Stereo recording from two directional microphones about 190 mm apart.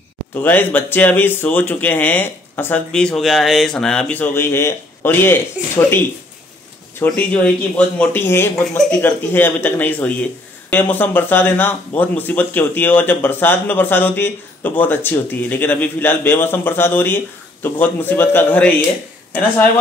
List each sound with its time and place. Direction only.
0.3 s speech: 10° left (ahead or behind)
7.0 s speech: 5° left (ahead or behind)